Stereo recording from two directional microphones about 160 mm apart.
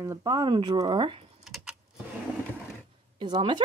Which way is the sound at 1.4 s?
Centre (ahead or behind).